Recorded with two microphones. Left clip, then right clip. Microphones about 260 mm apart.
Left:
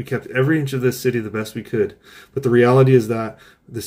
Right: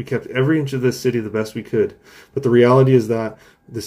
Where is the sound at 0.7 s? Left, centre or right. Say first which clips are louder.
Right 1 dB; left.